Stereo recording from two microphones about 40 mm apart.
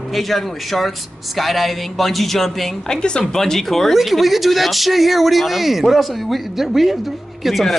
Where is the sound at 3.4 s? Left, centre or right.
Centre.